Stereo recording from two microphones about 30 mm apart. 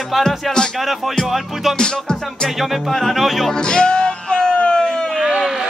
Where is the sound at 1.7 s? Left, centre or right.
Left.